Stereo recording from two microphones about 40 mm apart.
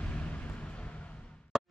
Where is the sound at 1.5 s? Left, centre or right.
Centre.